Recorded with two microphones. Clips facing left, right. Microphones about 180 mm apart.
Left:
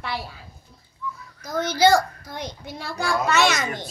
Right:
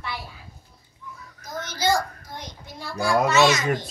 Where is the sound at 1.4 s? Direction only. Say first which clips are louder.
Left 10 dB; 70° left (ahead or behind).